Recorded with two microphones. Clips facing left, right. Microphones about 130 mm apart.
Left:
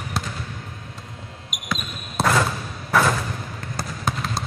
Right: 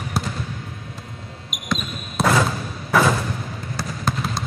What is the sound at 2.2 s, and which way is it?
Thump, 5° right (ahead or behind).